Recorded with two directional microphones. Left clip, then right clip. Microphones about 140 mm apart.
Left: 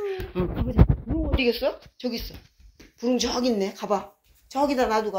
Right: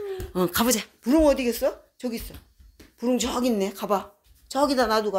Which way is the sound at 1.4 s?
60° right (ahead or behind).